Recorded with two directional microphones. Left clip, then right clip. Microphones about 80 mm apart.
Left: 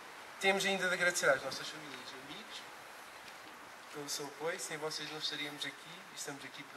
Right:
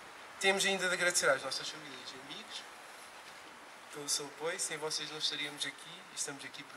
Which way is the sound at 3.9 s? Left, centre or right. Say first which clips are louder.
Right 3 dB; right.